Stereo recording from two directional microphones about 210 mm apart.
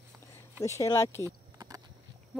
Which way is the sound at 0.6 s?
15° left (ahead or behind).